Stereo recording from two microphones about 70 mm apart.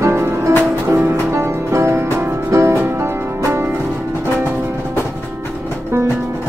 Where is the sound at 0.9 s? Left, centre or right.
Right.